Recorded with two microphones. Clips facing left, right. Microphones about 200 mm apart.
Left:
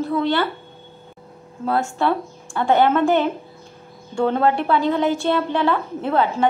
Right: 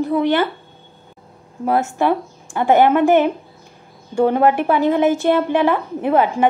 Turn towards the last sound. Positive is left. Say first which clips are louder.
# right 4 dB
turn(degrees=-15)  # may be behind; listen again after turning